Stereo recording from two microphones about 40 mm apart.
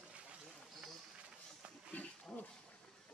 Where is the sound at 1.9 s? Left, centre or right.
Left.